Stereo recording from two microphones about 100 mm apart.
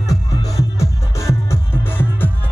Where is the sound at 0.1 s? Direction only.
35° left (ahead or behind).